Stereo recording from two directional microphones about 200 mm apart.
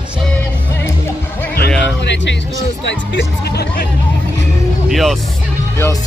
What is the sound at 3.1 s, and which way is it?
Speech, 55° left (ahead or behind).